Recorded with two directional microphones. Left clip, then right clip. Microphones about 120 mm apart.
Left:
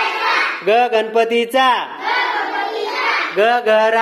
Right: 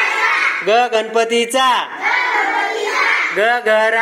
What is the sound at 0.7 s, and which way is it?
Speech, 20° left (ahead or behind).